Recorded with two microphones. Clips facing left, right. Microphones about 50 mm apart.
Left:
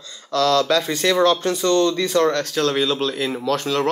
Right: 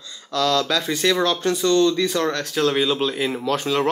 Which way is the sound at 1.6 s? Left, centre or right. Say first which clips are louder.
Right 3 dB; left.